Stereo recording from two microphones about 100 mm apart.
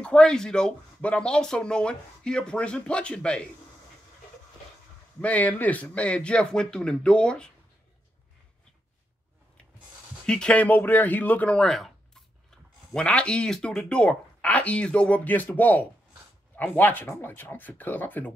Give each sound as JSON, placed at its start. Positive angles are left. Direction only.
{"t": 0.0, "sound": "speech", "side_deg": 10}
{"t": 5.2, "sound": "speech", "side_deg": 15}
{"t": 10.2, "sound": "speech", "side_deg": 10}